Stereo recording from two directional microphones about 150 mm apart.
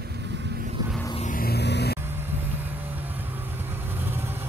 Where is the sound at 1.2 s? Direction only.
75° left (ahead or behind).